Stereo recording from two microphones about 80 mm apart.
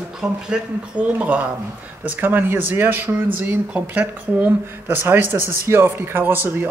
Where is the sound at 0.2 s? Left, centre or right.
Centre.